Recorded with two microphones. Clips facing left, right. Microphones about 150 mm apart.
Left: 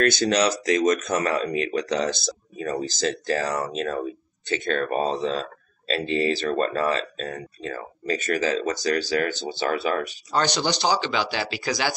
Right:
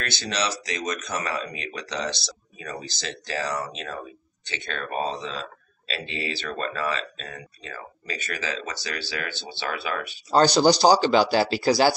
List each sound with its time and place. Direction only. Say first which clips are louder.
0.0 s speech: left 9 dB; 50° left (ahead or behind)
10.3 s speech: right 6 dB; 35° right (ahead or behind)